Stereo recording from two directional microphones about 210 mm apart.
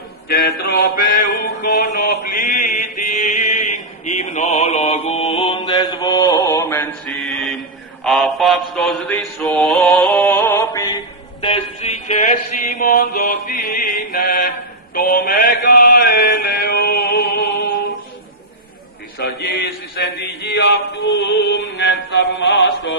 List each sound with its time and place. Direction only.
0.3 s mantra: 45° left (ahead or behind); by 10.3 s 5° left (ahead or behind)
10.3 s music: 15° left (ahead or behind)
11.4 s chant: 30° left (ahead or behind)
15.0 s mantra: 45° left (ahead or behind)
19.1 s a sound: 50° left (ahead or behind)